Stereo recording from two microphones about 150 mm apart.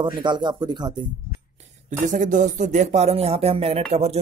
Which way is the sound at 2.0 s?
55° right (ahead or behind).